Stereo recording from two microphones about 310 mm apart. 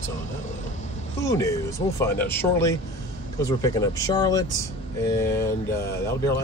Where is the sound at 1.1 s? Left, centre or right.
Centre.